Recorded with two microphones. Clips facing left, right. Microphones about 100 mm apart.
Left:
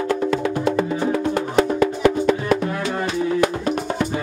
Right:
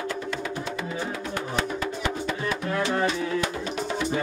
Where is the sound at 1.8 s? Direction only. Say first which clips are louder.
Left 11 dB; 65° left (ahead or behind).